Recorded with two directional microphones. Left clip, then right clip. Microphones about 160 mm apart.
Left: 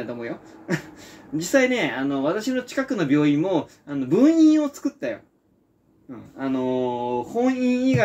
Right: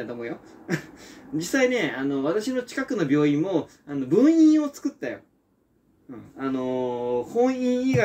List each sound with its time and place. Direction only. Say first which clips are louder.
0.0 s speech: left 2 dB; 5° left (ahead or behind)
6.3 s speech: left 3 dB; 5° left (ahead or behind)